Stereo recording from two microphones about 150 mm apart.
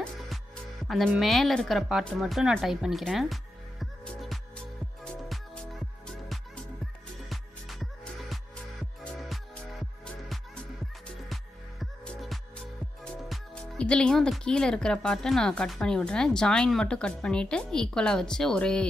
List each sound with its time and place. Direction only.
0.8 s speech: centre (ahead or behind)
3.8 s music: centre (ahead or behind)
11.8 s music: 5° left (ahead or behind)
13.0 s speech: 5° left (ahead or behind)